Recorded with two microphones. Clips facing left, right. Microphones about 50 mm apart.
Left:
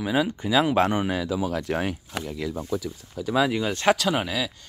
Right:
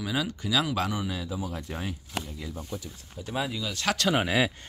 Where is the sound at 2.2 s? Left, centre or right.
Left.